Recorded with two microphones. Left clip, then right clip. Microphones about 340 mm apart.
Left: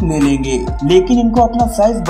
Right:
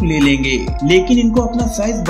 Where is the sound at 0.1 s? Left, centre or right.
Centre.